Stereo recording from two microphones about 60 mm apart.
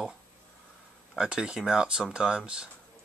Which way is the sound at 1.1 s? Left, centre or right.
Centre.